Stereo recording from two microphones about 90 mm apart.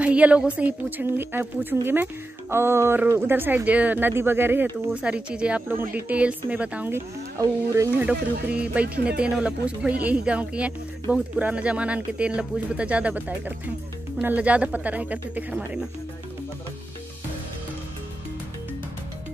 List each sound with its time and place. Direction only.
0.0 s a sound: 15° right (ahead or behind)
0.6 s speech: 20° right (ahead or behind)
4.9 s speech: 10° right (ahead or behind)
5.7 s speech: 20° right (ahead or behind)
7.3 s speech: 35° right (ahead or behind)
8.0 s speech: 15° right (ahead or behind)